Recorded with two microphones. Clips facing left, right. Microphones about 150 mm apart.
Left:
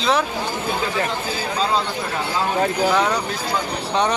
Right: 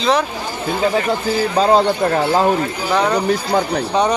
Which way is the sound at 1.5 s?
50° right (ahead or behind).